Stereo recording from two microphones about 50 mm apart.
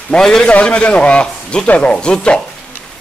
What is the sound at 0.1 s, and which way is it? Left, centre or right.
Speech, centre.